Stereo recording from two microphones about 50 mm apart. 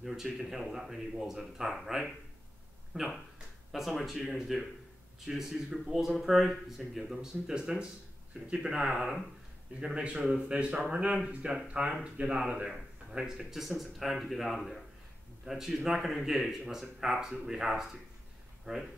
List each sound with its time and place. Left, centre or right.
0.0 s speech: centre; by 11.1 s right
11.2 s speech: centre
18.7 s speech: right